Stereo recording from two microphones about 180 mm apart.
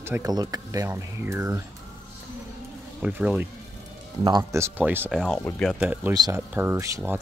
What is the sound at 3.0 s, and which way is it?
Speech, 5° right (ahead or behind).